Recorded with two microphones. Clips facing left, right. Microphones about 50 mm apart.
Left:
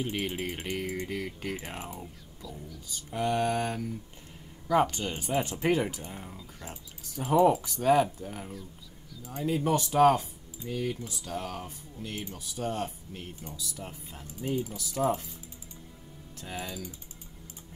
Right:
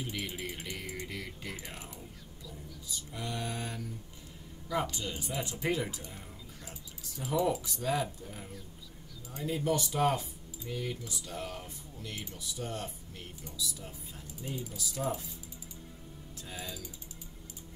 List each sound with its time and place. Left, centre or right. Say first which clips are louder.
0.0 s speech: left 6 dB; left
2.4 s whispering: left 6 dB; centre
3.1 s speech: left 11 dB; left
9.3 s speech: left 4 dB; left
16.3 s speech: left 5 dB; left